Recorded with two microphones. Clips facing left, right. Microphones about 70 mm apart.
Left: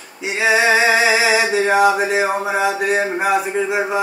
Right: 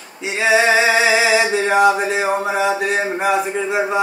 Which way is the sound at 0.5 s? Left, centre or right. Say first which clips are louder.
Even; centre.